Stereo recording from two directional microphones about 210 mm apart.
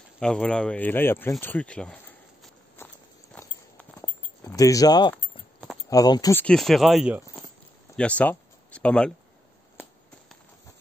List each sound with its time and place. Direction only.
0.2 s speech: 5° left (ahead or behind)
2.8 s walk: 10° left (ahead or behind)
4.4 s speech: 15° left (ahead or behind)
6.4 s speech: centre (ahead or behind)
7.9 s a sound: 5° left (ahead or behind)